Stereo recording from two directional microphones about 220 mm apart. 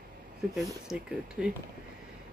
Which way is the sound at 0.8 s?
5° right (ahead or behind).